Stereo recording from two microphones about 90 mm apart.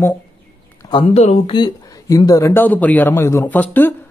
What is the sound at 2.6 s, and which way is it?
Speech, 20° left (ahead or behind).